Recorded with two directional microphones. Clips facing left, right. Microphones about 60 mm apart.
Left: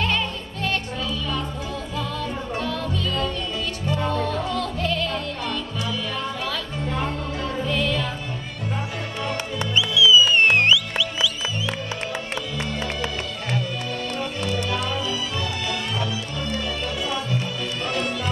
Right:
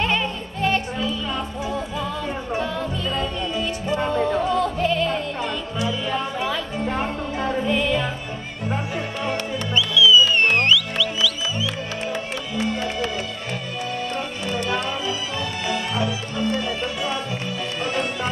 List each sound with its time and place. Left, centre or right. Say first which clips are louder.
0.0 s music: right 2 dB; right
2.6 s music: right 1 dB; right
6.9 s music: even; right
7.6 s music: right 1 dB; right
9.8 s music: right 1 dB; centre
14.7 s music: right 1 dB; right